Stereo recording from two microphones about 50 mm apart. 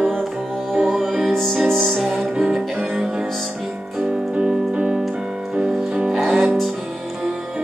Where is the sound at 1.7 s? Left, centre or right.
Centre.